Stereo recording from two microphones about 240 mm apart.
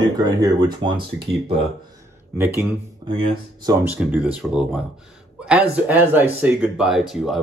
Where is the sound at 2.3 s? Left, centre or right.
Centre.